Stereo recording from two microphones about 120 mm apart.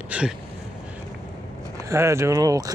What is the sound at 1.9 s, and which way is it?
Speech, 25° right (ahead or behind).